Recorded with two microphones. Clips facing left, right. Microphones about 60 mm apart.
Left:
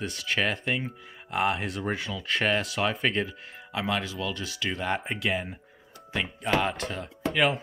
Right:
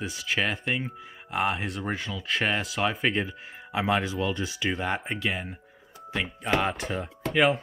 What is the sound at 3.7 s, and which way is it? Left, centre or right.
Speech, right.